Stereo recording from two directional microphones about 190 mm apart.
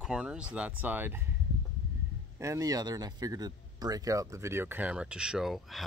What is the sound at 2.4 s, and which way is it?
Speech, 15° right (ahead or behind).